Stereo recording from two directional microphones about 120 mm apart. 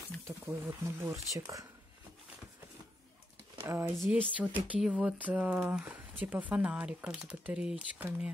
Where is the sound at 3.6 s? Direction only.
20° right (ahead or behind).